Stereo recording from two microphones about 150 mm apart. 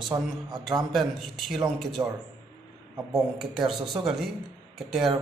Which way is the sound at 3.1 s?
Centre (ahead or behind).